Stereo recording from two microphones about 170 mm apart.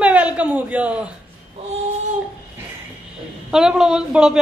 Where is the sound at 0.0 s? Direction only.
10° right (ahead or behind).